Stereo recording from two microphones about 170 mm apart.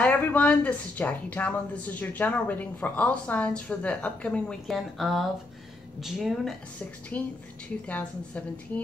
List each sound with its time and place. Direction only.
0.0 s a woman's voice: 10° left (ahead or behind)
7.1 s a woman's voice: 10° left (ahead or behind)